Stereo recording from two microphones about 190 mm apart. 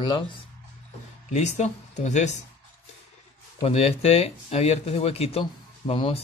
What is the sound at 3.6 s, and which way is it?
Speech, 35° left (ahead or behind).